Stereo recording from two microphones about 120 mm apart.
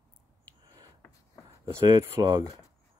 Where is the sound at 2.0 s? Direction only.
30° right (ahead or behind).